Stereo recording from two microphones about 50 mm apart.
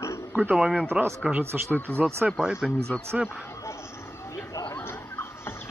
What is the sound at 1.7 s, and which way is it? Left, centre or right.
Speech, left.